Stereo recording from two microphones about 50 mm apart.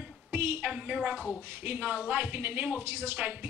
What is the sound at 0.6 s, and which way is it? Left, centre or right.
A woman's voice, right.